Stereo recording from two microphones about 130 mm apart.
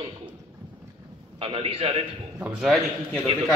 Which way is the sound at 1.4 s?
45° right (ahead or behind).